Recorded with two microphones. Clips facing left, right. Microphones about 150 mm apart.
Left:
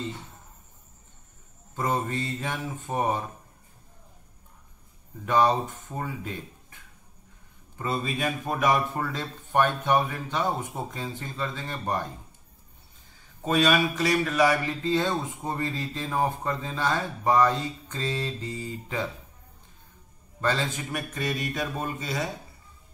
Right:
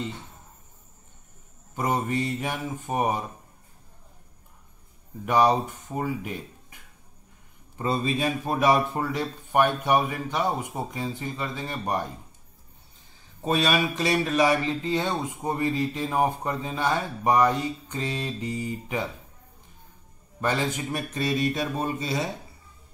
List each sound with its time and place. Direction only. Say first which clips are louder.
1.8 s speech: right 2 dB; 15° right (ahead or behind)
5.2 s speech: right 2 dB; 15° right (ahead or behind)
7.7 s a man's voice: right 4 dB; 25° right (ahead or behind)
8.9 s speech: right 3 dB; 15° right (ahead or behind)
13.7 s speech: left 1 dB; 25° right (ahead or behind)
20.3 s speech: right 1 dB; 15° right (ahead or behind)
20.9 s a man's voice: right 3 dB; 25° right (ahead or behind)